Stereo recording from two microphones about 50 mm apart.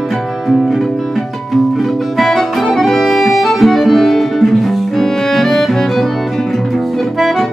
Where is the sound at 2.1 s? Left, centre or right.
Centre.